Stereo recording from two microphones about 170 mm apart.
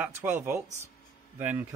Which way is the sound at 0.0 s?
10° right (ahead or behind).